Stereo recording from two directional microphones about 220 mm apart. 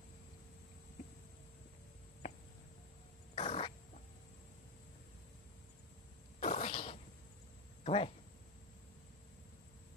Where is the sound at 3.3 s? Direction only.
25° left (ahead or behind).